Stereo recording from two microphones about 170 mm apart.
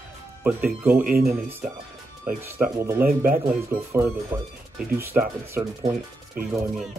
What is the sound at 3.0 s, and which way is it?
Speech, 55° right (ahead or behind).